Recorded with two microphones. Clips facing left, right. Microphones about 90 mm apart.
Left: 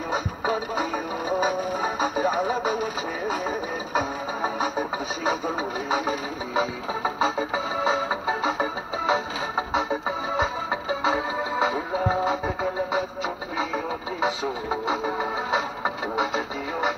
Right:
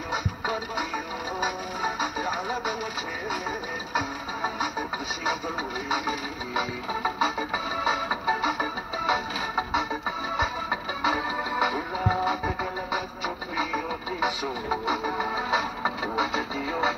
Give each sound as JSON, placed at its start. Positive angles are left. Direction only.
{"t": 0.1, "sound": "music", "side_deg": 40}
{"t": 13.6, "sound": "radio", "side_deg": 25}
{"t": 14.7, "sound": "music", "side_deg": 25}